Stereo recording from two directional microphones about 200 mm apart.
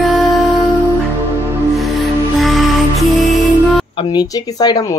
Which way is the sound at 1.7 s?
Centre (ahead or behind).